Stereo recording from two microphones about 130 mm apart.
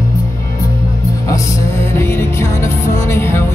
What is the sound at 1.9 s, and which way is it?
Music, 20° left (ahead or behind).